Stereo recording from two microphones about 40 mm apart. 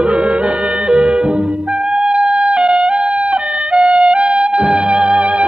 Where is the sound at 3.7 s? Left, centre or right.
Right.